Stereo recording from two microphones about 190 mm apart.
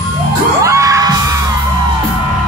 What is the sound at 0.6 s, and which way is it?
Music, 15° right (ahead or behind).